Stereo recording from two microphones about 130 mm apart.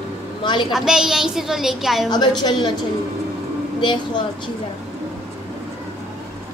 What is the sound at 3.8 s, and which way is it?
Speech, 35° left (ahead or behind).